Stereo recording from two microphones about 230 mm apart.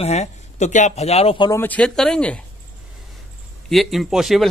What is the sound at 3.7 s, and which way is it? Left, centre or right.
Speech, centre.